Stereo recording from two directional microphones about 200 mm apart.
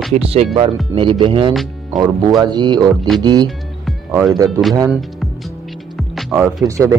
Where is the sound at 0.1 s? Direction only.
30° right (ahead or behind).